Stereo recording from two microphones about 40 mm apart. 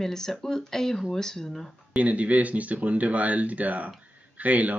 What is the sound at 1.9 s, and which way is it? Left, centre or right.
Speech, right.